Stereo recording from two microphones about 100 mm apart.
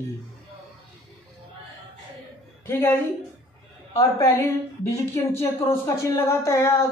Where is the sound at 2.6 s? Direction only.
25° left (ahead or behind).